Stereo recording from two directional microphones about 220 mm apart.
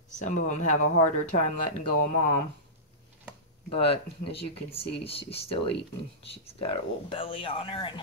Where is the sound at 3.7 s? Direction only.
25° left (ahead or behind).